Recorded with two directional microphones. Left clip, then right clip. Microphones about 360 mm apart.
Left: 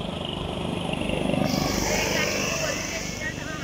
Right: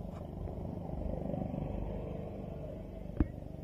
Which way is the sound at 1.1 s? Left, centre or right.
Left.